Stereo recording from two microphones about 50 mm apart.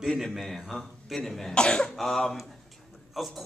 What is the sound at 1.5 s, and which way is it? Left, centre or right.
Speech, centre.